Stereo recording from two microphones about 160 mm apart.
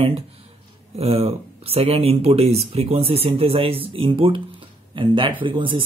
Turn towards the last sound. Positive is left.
turn(degrees=-30)  # may be behind; listen again after turning